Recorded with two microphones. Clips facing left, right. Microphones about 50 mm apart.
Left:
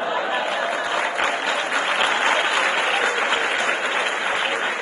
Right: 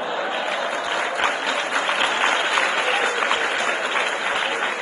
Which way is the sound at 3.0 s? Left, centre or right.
Left.